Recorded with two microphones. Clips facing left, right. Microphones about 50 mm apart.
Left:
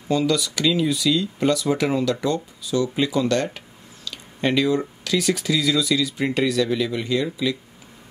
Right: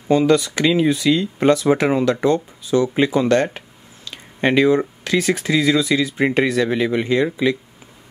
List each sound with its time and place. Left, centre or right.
0.1 s speech: right